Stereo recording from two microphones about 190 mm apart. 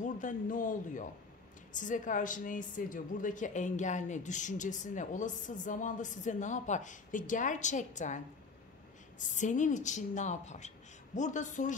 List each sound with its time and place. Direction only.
0.0 s a woman's voice: 40° left (ahead or behind)
9.3 s a woman's voice: 40° left (ahead or behind)